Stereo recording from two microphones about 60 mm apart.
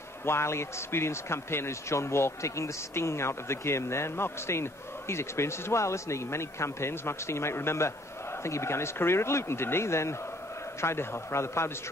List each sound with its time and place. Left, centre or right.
0.2 s a man's voice: left